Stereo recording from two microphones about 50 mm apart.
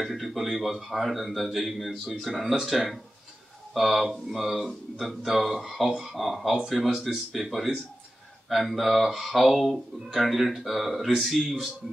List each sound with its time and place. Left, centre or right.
0.0 s speech: centre
3.7 s speech: centre